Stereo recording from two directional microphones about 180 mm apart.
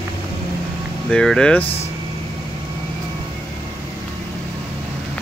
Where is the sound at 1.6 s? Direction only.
30° left (ahead or behind).